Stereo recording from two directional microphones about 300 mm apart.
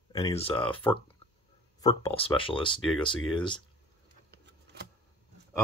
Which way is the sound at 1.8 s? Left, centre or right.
Centre.